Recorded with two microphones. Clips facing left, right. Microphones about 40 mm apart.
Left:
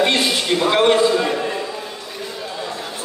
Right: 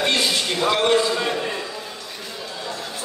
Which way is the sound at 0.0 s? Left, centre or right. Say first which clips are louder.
Left 3 dB; left.